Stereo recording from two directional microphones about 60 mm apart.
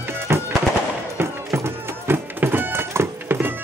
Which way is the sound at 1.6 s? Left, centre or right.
Right.